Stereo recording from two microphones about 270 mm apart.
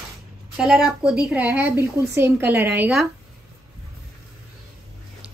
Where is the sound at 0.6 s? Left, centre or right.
Centre.